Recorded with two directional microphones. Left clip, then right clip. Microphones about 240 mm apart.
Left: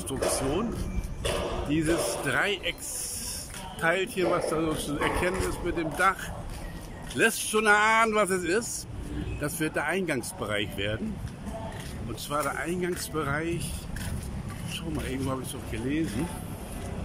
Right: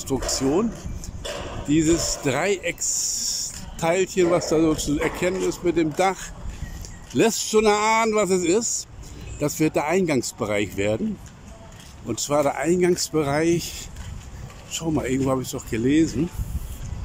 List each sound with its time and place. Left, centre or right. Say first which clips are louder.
0.3 s speech: right 8 dB; centre
1.7 s speech: right 7 dB; centre
7.2 s speech: right 5 dB; right
12.2 s speech: right 8 dB; right
14.7 s speech: right 10 dB; right